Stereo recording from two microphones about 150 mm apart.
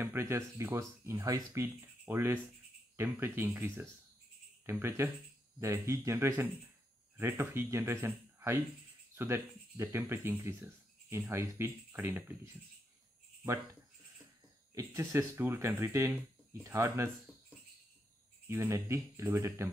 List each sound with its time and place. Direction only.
0.0 s speech: 15° right (ahead or behind)
14.7 s speech: 20° right (ahead or behind)
18.5 s speech: 20° right (ahead or behind)